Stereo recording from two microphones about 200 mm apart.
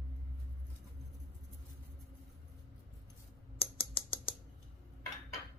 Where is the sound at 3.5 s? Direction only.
25° left (ahead or behind).